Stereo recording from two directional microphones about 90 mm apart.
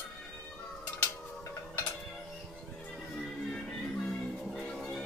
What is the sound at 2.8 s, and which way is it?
Music, 5° left (ahead or behind).